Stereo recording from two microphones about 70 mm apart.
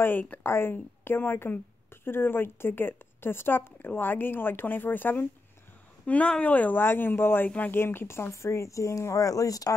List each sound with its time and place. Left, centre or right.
0.0 s a woman's voice: left
6.0 s speech: centre
7.8 s speech: left